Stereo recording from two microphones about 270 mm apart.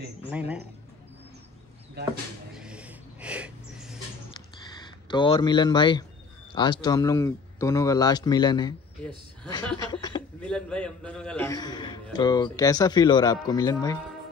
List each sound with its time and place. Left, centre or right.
0.3 s speech: centre
2.5 s a sound: centre
5.1 s speech: centre
10.4 s speech: centre